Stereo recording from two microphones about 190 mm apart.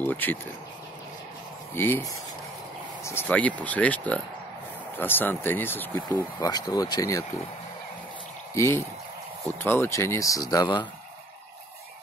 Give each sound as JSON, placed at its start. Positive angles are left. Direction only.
{"t": 0.0, "sound": "speech", "side_deg": 10}
{"t": 1.8, "sound": "speech", "side_deg": 10}
{"t": 8.5, "sound": "speech", "side_deg": 15}